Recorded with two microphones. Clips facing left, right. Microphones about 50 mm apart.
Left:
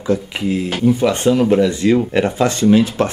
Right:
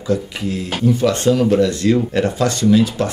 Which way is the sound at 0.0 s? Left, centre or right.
Left.